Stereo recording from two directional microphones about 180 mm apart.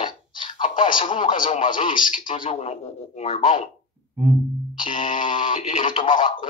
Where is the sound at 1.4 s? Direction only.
30° left (ahead or behind).